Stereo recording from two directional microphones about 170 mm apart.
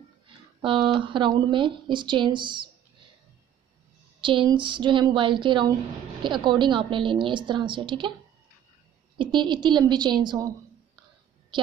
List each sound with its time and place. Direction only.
0.6 s a woman's voice: 30° right (ahead or behind)
4.2 s a woman's voice: 30° right (ahead or behind)
9.2 s a woman's voice: 25° right (ahead or behind)